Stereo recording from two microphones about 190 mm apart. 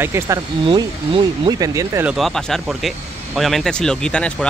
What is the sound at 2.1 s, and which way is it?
Speech, centre (ahead or behind).